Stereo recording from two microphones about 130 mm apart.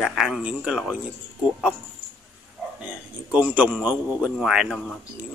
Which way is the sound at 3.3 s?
10° right (ahead or behind).